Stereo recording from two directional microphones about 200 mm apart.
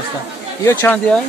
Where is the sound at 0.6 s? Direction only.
10° left (ahead or behind).